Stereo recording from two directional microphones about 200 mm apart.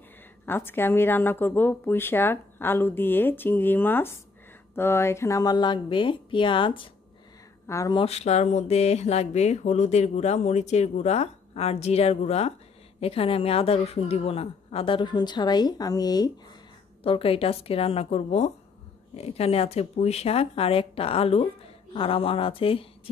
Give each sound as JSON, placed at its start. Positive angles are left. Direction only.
{"t": 0.5, "sound": "a woman's voice", "side_deg": 10}
{"t": 8.0, "sound": "a woman's voice", "side_deg": 30}